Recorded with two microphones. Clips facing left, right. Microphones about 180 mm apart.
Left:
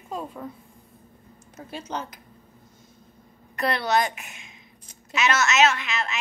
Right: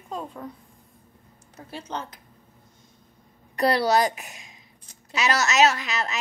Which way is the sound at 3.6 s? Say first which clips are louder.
Right 3 dB; 35° right (ahead or behind).